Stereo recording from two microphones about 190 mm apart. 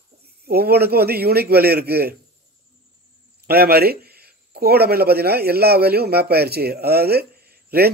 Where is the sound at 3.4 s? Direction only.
55° right (ahead or behind).